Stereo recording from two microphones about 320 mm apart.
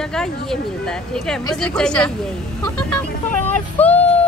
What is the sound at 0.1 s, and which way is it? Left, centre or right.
Speech, centre.